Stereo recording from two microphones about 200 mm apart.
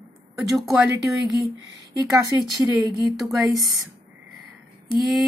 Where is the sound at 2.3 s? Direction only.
Centre (ahead or behind).